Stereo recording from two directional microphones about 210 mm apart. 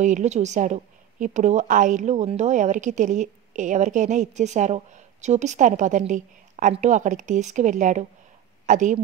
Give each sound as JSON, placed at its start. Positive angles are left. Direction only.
{"t": 0.0, "sound": "a woman's voice", "side_deg": -35}